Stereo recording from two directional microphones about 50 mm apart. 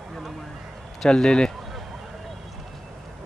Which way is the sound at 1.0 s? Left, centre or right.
Centre.